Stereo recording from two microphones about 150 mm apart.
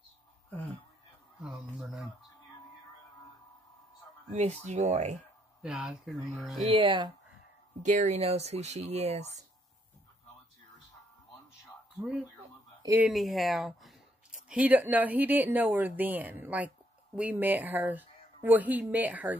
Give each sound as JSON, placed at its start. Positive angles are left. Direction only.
{"t": 1.4, "sound": "speech", "side_deg": -5}
{"t": 4.4, "sound": "speech", "side_deg": -45}
{"t": 5.6, "sound": "speech", "side_deg": -5}
{"t": 6.6, "sound": "speech", "side_deg": -35}
{"t": 7.8, "sound": "speech", "side_deg": -55}
{"t": 12.0, "sound": "speech", "side_deg": -5}
{"t": 12.8, "sound": "speech", "side_deg": -15}
{"t": 13.1, "sound": "speech", "side_deg": 0}